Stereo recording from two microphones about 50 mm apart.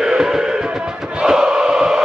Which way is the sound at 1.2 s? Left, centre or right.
Centre.